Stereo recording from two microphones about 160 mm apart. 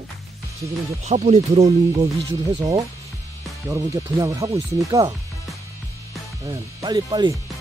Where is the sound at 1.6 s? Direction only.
20° right (ahead or behind).